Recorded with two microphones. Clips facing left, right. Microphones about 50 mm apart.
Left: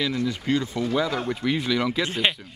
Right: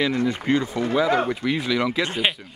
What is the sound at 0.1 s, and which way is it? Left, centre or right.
Speech, right.